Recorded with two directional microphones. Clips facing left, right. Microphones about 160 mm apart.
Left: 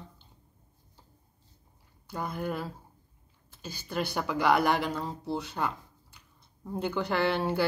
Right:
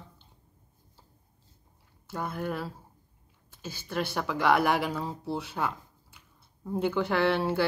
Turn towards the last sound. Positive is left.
turn(degrees=0)  # may be behind; listen again after turning